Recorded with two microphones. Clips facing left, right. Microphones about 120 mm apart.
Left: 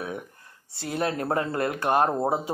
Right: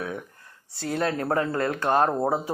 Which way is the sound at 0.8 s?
20° left (ahead or behind).